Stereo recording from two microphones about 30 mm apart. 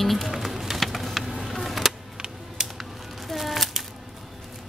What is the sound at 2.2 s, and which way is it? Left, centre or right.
Music, right.